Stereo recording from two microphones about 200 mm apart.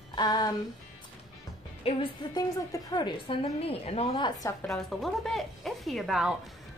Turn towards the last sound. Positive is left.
turn(degrees=0)  # may be behind; listen again after turning